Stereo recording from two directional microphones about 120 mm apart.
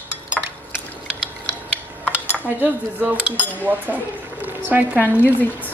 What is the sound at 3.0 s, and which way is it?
Cutlery, 15° right (ahead or behind).